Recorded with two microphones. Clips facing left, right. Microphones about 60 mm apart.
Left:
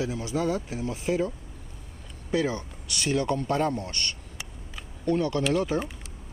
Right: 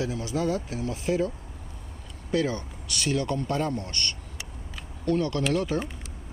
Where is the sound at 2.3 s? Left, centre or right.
Centre.